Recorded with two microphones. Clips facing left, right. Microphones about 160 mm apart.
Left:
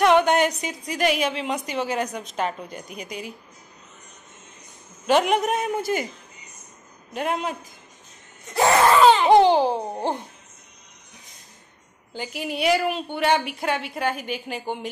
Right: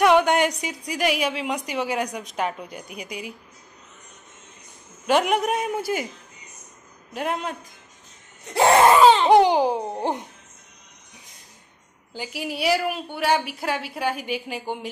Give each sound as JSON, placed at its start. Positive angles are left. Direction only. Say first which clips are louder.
{"t": 0.0, "sound": "a woman's voice", "louder": "even", "side_deg": -10}
{"t": 5.0, "sound": "a woman's voice", "louder": "left 1 dB", "side_deg": -10}
{"t": 7.2, "sound": "a woman's voice", "louder": "left 1 dB", "side_deg": 0}
{"t": 8.5, "sound": "a sound", "louder": "right 2 dB", "side_deg": -25}
{"t": 8.9, "sound": "laughter", "louder": "right 1 dB", "side_deg": -5}
{"t": 9.3, "sound": "a woman's voice", "louder": "left 1 dB", "side_deg": -10}
{"t": 12.1, "sound": "a woman's voice", "louder": "left 1 dB", "side_deg": -5}